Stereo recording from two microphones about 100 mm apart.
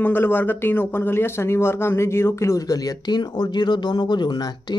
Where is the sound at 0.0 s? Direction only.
20° left (ahead or behind).